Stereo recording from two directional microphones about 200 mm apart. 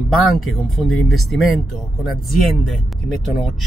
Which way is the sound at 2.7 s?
Centre (ahead or behind).